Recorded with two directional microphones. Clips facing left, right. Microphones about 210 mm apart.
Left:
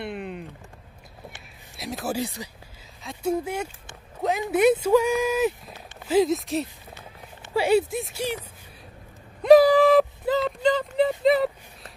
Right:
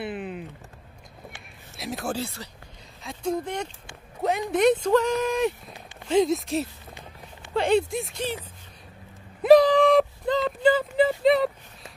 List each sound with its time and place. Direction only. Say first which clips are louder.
0.0 s a sound: right 1 dB; centre (ahead or behind)
1.8 s speech: even; centre (ahead or behind)
2.1 s speech: left 3 dB; 15° left (ahead or behind)
3.0 s speech: left 2 dB; 5° left (ahead or behind)
9.6 s a sound: left 2 dB; 5° left (ahead or behind)
10.6 s speech: right 4 dB; 5° right (ahead or behind)